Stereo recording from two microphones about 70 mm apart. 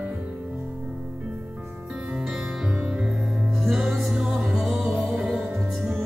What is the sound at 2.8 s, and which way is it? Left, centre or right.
Music, centre.